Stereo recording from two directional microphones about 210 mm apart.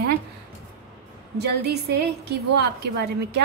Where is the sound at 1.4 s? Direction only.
50° right (ahead or behind).